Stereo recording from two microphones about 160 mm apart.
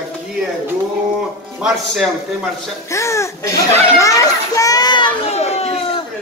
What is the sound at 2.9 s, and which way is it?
Speech, 20° left (ahead or behind).